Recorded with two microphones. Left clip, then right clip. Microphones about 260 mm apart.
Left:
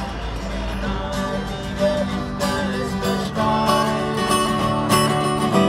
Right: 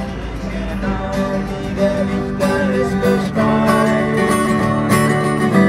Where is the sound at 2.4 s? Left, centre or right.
Centre.